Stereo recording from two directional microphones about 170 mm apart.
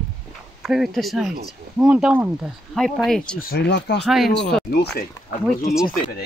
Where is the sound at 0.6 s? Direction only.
Centre (ahead or behind).